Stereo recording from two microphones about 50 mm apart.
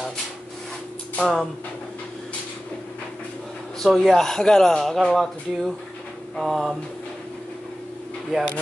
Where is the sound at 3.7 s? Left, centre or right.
Centre.